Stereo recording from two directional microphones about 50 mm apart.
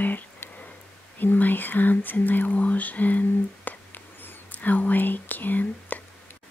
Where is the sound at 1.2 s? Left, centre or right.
Left.